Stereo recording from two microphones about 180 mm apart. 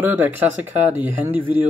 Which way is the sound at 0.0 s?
10° right (ahead or behind).